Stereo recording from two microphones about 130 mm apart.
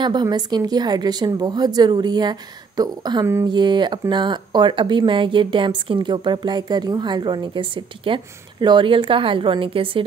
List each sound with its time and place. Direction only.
0.0 s a woman's voice: 35° right (ahead or behind)